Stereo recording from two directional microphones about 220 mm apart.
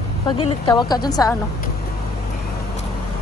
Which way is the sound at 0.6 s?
20° left (ahead or behind).